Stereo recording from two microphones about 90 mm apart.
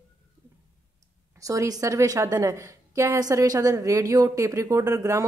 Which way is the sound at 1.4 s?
40° right (ahead or behind).